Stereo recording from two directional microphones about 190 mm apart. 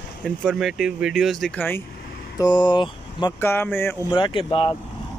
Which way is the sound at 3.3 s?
10° left (ahead or behind).